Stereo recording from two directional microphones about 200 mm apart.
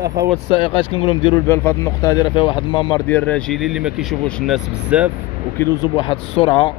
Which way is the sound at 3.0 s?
10° left (ahead or behind).